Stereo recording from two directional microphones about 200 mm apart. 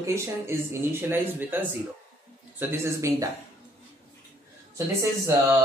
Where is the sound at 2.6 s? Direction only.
15° right (ahead or behind).